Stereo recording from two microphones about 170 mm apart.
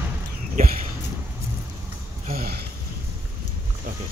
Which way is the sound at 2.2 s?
60° right (ahead or behind).